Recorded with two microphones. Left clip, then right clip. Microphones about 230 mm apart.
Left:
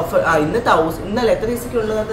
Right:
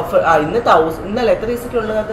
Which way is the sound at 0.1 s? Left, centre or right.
Centre.